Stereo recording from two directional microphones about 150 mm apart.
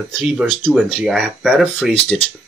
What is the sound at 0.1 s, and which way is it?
Speech, 5° right (ahead or behind).